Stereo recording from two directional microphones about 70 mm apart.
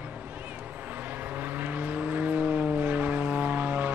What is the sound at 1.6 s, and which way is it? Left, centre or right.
Vehicle, right.